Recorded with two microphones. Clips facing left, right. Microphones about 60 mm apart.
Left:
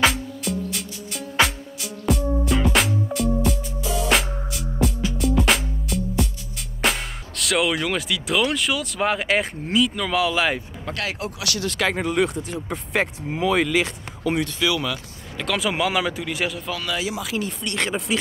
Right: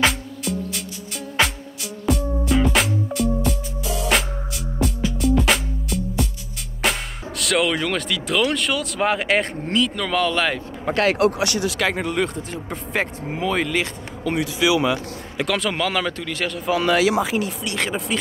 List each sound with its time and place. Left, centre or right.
0.0 s music: centre
6.8 s speech: centre
10.9 s speech: centre
11.6 s speech: centre
14.6 s speech: centre
15.4 s speech: centre
16.9 s speech: right
17.4 s speech: centre